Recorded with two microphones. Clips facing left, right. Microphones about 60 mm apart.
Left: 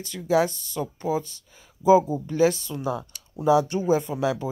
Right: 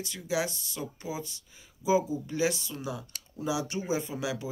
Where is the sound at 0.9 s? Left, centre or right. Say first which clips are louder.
Left 10 dB; left.